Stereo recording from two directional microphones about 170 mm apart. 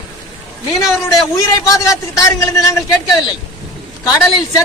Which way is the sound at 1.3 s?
20° left (ahead or behind).